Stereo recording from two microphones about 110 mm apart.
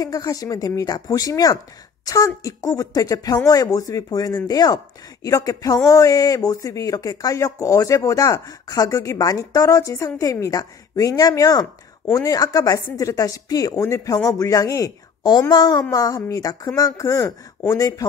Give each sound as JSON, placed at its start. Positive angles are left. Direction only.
{"t": 0.0, "sound": "speech", "side_deg": 35}